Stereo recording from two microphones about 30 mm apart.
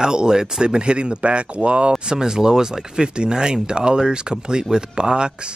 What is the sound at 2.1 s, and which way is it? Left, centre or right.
Speech, right.